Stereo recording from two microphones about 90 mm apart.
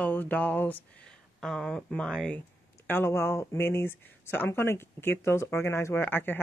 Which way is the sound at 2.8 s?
25° left (ahead or behind).